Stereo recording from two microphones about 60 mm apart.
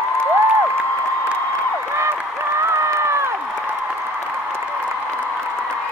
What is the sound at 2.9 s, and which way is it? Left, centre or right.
Crowd, right.